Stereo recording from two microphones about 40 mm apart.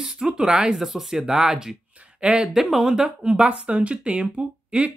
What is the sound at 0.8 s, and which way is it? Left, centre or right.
Speech, centre.